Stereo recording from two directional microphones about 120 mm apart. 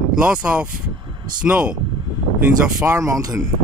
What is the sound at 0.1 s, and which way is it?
Speech, 10° right (ahead or behind).